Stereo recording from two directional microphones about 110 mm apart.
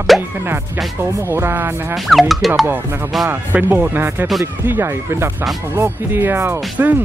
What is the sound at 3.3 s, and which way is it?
Speech, 20° right (ahead or behind).